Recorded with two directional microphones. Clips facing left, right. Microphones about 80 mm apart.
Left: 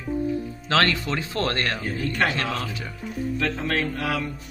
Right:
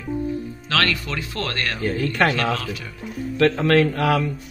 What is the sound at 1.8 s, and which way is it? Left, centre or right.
Speech, right.